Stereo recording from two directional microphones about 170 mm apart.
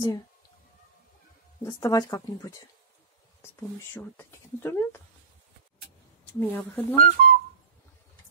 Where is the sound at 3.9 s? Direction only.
15° left (ahead or behind).